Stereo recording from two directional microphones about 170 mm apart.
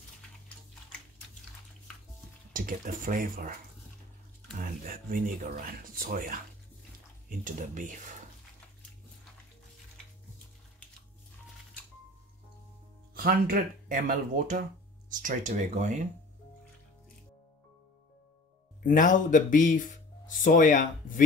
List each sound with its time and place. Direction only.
2.5 s speech: 55° right (ahead or behind)
4.6 s speech: 55° right (ahead or behind)
13.1 s speech: 60° right (ahead or behind)
18.8 s speech: 50° left (ahead or behind)